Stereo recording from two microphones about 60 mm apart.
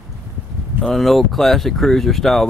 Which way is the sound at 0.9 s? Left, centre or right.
Centre.